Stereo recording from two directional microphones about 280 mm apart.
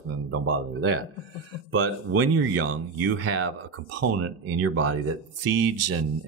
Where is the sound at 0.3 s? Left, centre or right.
Right.